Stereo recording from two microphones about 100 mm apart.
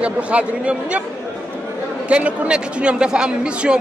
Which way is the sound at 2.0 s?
10° right (ahead or behind).